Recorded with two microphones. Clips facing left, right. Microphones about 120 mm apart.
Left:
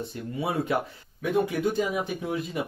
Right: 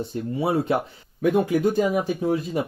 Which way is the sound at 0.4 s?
30° right (ahead or behind).